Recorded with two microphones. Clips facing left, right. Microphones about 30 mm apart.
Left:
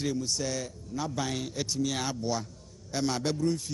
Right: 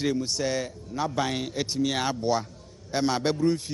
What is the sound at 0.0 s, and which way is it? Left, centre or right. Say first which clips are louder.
Speech: right 4 dB; right.